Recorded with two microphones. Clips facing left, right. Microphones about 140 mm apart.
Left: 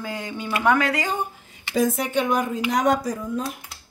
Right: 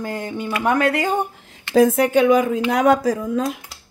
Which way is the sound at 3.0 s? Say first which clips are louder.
Right 7 dB; 90° right.